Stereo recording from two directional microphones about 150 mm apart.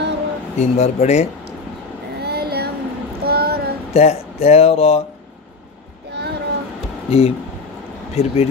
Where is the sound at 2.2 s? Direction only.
90° right.